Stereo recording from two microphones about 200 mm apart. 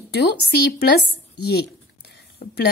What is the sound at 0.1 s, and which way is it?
Speech, 55° left (ahead or behind).